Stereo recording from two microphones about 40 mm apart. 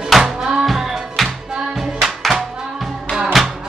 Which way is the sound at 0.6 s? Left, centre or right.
Centre.